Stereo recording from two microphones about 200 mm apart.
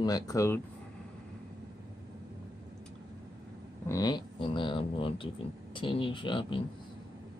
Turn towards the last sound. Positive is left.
turn(degrees=25)  # may be behind; listen again after turning